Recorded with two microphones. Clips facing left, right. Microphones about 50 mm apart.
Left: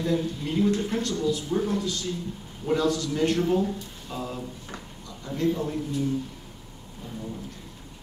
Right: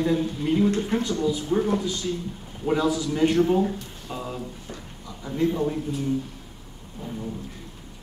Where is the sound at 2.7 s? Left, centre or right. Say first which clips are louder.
Right 1 dB; centre.